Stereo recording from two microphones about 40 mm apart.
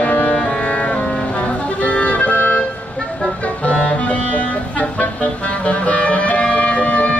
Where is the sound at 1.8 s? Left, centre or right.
Left.